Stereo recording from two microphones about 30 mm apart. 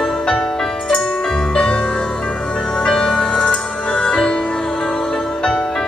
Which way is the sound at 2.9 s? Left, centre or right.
Left.